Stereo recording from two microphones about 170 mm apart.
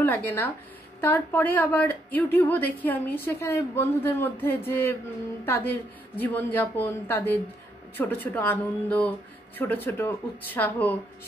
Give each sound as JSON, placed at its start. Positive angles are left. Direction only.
{"t": 0.0, "sound": "a woman's voice", "side_deg": 10}